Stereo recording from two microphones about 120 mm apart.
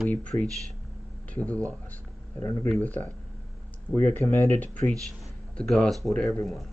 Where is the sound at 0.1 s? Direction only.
10° left (ahead or behind).